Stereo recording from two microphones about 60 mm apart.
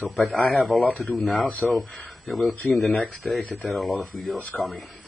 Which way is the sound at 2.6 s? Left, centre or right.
Left.